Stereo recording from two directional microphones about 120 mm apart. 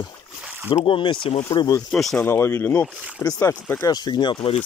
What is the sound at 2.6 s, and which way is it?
Speech, 10° left (ahead or behind).